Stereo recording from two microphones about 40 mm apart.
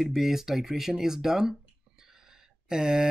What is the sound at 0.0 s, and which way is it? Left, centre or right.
Speech, centre.